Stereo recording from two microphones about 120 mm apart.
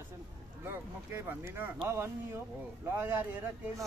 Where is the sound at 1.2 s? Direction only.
15° right (ahead or behind).